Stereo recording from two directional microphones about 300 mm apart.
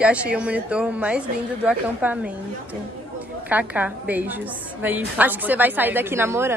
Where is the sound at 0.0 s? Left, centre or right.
Centre.